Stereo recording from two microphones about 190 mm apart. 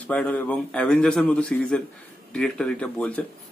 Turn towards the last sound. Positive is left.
turn(degrees=5)  # may be behind; listen again after turning